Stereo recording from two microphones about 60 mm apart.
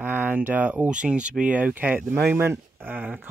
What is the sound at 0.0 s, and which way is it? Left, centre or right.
Speech, right.